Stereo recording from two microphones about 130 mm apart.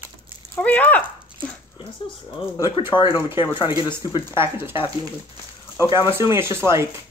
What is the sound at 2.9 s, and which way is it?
Speech, 35° left (ahead or behind).